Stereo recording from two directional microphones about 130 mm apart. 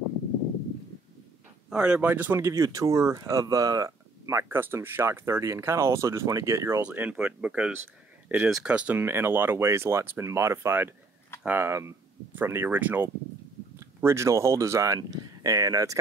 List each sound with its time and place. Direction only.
1.7 s speech: 10° right (ahead or behind); by 6.8 s 25° right (ahead or behind)
6.8 s speech: 10° right (ahead or behind); by 16.0 s 25° right (ahead or behind)